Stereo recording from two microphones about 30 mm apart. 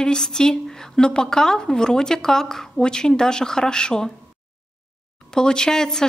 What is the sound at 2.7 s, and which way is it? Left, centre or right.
Speech, left.